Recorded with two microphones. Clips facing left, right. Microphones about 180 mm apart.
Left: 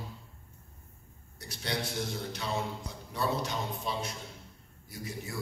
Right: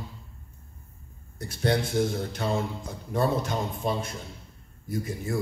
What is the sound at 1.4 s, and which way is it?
A man's voice, 50° right (ahead or behind).